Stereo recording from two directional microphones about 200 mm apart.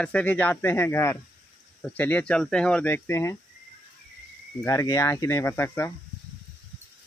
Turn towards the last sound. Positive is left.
turn(degrees=10)  # may be behind; listen again after turning